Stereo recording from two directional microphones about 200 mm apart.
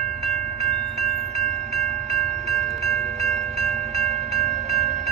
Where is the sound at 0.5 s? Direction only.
30° right (ahead or behind).